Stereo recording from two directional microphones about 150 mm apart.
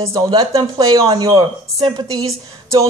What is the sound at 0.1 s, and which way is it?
A woman's voice, 25° right (ahead or behind).